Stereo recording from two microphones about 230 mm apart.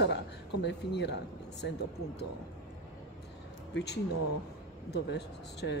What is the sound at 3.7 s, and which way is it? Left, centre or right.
A woman's voice, left.